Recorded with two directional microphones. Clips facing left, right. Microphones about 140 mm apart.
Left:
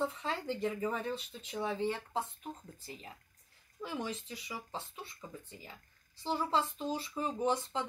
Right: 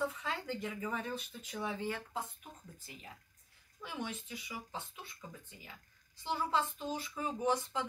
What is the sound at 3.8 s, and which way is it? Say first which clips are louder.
Speech: left 3 dB; 35° left (ahead or behind).